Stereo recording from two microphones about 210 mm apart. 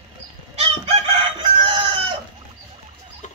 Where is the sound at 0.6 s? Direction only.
25° right (ahead or behind).